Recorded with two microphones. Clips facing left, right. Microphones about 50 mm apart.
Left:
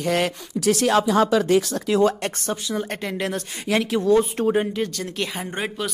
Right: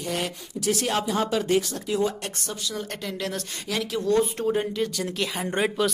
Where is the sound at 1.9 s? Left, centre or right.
Left.